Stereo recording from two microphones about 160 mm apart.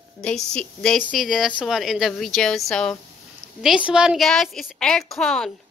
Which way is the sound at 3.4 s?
80° right.